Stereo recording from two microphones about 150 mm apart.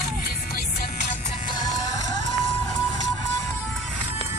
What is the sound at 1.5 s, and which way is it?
Music, 25° left (ahead or behind).